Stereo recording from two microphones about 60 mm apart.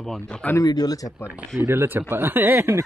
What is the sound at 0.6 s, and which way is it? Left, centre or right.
Speech, left.